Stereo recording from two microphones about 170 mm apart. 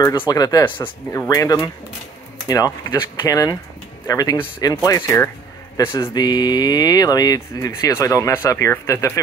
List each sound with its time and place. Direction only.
0.3 s speech: 20° left (ahead or behind)
5.8 s speech: 30° left (ahead or behind)